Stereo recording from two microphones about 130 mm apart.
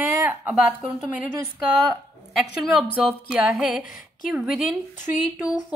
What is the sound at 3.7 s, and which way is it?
Speech, 90° left.